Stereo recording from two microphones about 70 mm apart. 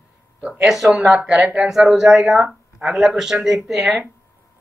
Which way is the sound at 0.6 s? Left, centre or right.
Centre.